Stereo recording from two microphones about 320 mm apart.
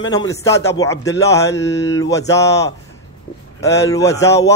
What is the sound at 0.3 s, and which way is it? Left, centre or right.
A man's voice, centre.